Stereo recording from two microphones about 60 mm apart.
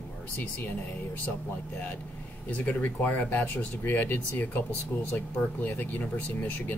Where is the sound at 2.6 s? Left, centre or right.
Left.